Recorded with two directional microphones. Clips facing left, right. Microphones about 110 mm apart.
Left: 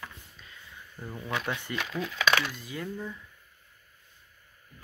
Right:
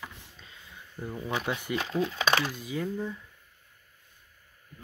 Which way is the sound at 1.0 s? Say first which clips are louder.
Right 4 dB; 10° right (ahead or behind).